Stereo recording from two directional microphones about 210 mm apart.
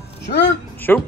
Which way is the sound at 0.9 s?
10° left (ahead or behind).